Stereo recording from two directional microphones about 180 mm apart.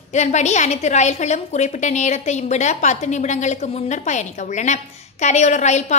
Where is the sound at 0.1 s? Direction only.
40° left (ahead or behind).